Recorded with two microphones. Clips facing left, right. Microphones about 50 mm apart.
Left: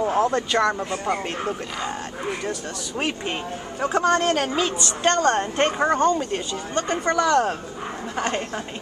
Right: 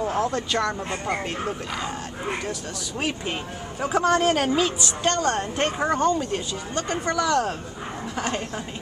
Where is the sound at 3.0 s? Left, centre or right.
Centre.